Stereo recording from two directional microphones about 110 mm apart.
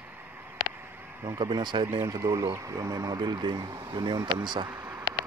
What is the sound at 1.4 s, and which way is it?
Speech, 40° right (ahead or behind).